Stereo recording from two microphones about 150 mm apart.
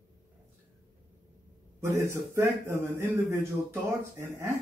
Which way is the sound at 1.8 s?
15° right (ahead or behind).